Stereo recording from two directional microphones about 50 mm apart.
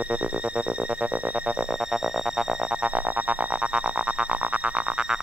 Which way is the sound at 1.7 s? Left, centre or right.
Centre.